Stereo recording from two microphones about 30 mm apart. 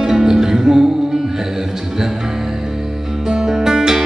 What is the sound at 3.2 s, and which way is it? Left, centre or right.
Music, right.